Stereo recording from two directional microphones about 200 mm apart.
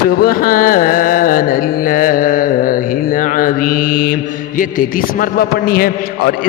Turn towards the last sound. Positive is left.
turn(degrees=50)  # may be behind; listen again after turning